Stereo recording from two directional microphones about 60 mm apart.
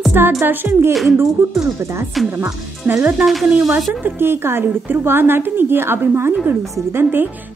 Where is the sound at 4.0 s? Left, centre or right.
Right.